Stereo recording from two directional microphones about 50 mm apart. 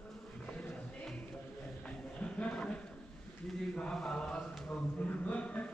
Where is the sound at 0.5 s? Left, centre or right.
Left.